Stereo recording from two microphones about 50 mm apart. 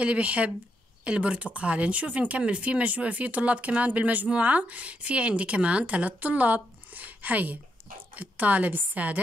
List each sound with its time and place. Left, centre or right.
0.0 s speech: right